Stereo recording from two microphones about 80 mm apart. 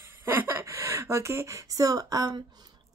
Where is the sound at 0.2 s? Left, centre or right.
Right.